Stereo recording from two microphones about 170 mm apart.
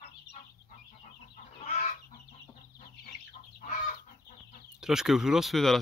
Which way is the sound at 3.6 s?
45° left (ahead or behind).